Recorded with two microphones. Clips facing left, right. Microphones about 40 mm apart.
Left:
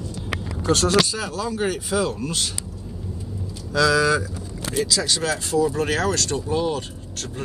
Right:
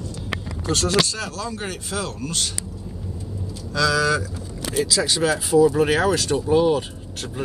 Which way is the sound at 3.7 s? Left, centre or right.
Centre.